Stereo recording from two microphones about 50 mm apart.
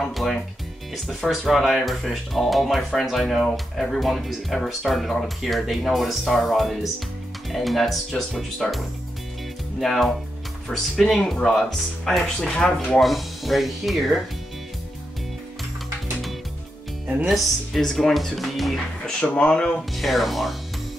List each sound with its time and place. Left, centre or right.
0.1 s speech: centre
12.4 s speech: left
13.0 s speech: centre
17.3 s speech: centre
19.3 s speech: left
19.9 s speech: centre